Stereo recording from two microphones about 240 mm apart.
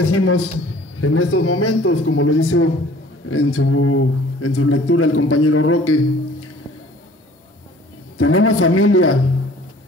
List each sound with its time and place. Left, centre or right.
0.0 s a man's voice: left
8.2 s speech: left